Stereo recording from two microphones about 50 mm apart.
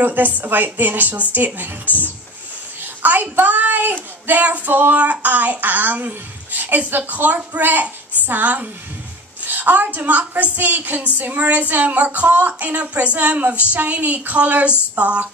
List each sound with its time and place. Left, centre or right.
0.0 s a child's voice: right
1.9 s speech: left
2.8 s a child's voice: right